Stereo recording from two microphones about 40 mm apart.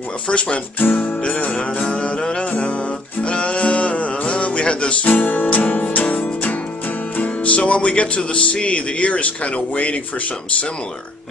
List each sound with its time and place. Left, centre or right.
0.3 s music: left
0.7 s music: left
1.2 s music: left
5.0 s music: left